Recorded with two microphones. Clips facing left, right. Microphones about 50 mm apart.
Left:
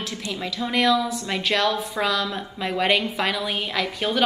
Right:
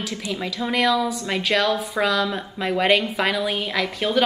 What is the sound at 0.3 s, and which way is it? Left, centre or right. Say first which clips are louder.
A woman's voice: right 1 dB; centre.